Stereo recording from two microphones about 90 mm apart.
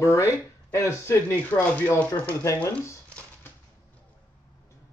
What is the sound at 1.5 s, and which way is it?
Speech, 15° left (ahead or behind).